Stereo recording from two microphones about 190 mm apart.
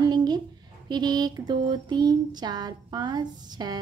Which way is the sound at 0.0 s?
20° right (ahead or behind).